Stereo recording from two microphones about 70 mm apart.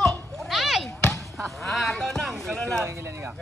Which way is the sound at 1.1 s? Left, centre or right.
Centre.